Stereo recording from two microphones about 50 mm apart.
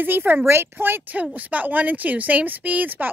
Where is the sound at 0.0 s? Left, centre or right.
Right.